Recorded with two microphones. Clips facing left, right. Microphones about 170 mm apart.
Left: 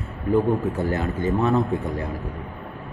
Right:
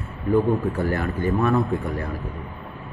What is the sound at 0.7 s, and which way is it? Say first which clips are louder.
Mantra: even; 20° left (ahead or behind).